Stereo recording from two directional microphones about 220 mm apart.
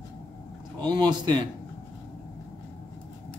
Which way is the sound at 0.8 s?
20° right (ahead or behind).